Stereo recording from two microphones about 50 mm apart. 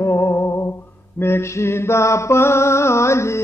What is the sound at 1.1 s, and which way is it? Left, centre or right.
Mantra, left.